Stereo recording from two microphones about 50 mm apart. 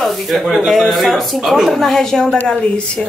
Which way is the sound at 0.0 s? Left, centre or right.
Centre.